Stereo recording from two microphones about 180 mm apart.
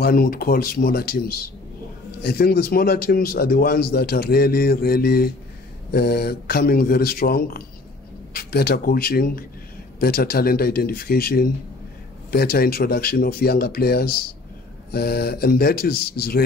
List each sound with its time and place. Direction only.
0.0 s a man's voice: 55° left (ahead or behind)